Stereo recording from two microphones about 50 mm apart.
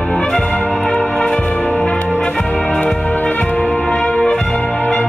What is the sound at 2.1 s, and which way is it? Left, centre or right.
Music, centre.